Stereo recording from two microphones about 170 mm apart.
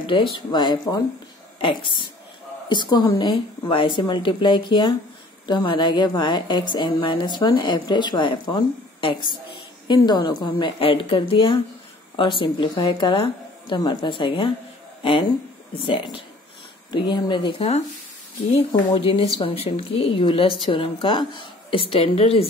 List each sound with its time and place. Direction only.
0.0 s a woman's voice: 30° left (ahead or behind)
15.8 s a woman's voice: 30° left (ahead or behind)
18.9 s a woman's voice: 35° left (ahead or behind)